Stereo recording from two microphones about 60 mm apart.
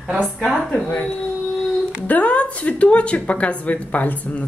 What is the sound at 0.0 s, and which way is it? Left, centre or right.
Speech, centre.